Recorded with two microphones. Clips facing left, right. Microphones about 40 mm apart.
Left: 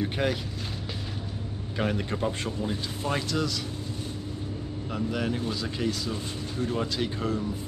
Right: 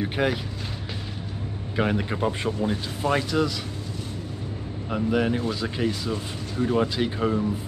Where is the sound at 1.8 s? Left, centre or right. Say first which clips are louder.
Right 4 dB; centre.